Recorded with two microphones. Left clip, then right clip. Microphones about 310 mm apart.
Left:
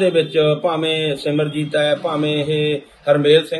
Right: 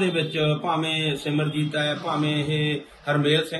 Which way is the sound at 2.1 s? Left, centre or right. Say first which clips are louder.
Left 6 dB; right.